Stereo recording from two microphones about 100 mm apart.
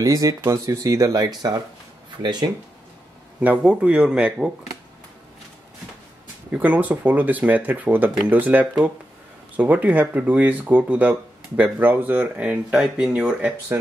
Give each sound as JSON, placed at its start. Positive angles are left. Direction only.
{"t": 0.0, "sound": "speech", "side_deg": -35}
{"t": 3.3, "sound": "speech", "side_deg": -15}
{"t": 6.5, "sound": "speech", "side_deg": -15}